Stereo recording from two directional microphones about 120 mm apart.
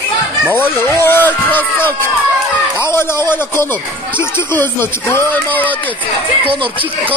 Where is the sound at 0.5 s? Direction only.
20° left (ahead or behind).